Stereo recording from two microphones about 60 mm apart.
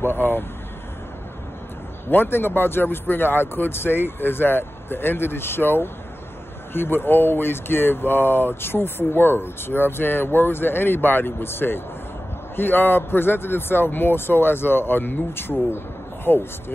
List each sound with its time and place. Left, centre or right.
0.0 s speech: left
2.0 s speech: left